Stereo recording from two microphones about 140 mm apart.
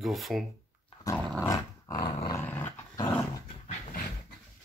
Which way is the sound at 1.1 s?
25° left (ahead or behind).